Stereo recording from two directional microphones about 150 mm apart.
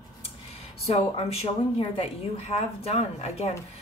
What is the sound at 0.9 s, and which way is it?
Speech, 40° left (ahead or behind).